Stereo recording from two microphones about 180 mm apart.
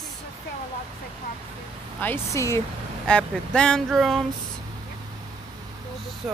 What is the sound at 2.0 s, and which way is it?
Speech, 15° left (ahead or behind).